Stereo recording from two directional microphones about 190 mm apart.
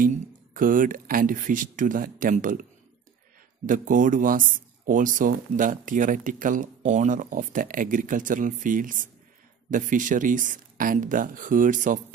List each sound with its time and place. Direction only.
0.0 s speech: 45° right (ahead or behind)
3.6 s speech: 45° right (ahead or behind)